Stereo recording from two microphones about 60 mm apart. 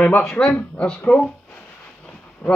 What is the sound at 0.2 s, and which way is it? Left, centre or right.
Speech, centre.